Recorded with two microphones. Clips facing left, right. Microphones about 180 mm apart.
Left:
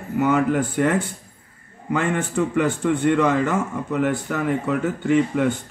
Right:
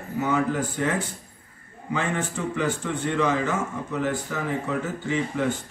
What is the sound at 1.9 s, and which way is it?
A man's voice, 55° left (ahead or behind).